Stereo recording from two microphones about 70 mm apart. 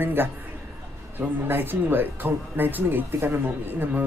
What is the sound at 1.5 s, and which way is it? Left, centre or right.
Speech, right.